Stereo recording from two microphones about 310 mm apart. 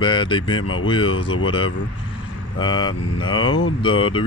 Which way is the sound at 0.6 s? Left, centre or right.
Left.